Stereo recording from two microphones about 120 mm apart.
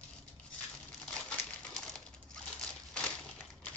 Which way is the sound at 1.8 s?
5° left (ahead or behind).